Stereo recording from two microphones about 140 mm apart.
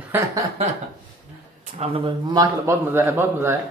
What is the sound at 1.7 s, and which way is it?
Speech, 50° right (ahead or behind).